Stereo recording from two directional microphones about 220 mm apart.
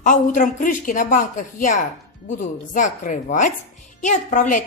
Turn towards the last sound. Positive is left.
turn(degrees=35)  # may be behind; listen again after turning